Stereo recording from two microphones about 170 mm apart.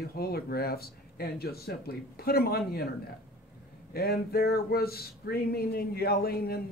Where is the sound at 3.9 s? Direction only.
65° left (ahead or behind).